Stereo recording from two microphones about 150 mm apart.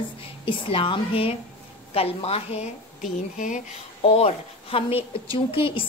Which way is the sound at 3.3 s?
60° left (ahead or behind).